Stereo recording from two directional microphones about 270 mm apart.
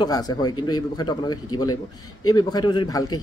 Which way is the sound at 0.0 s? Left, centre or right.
Centre.